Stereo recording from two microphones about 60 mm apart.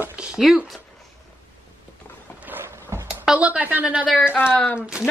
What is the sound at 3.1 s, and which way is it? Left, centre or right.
Speech, centre.